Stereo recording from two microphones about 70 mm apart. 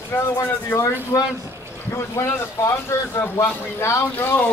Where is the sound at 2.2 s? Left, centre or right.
Left.